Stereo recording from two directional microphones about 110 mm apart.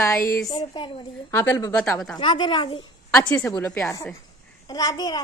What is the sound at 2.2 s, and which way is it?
Speech, 45° left (ahead or behind).